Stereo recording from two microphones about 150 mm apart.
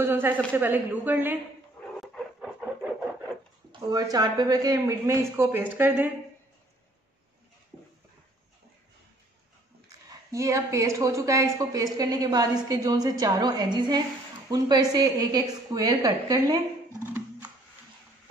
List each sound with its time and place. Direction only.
0.0 s speech: 15° right (ahead or behind)
2.0 s dog: centre (ahead or behind)
3.9 s speech: 25° right (ahead or behind)
7.7 s a sound: 5° right (ahead or behind)
10.3 s speech: 20° right (ahead or behind)